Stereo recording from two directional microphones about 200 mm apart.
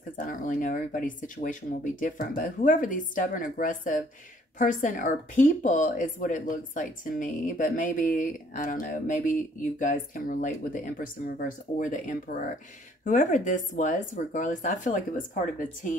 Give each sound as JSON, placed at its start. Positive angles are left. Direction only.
{"t": 0.3, "sound": "speech", "side_deg": 40}